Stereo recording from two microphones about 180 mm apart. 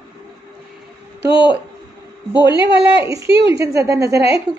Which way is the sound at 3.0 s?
15° right (ahead or behind).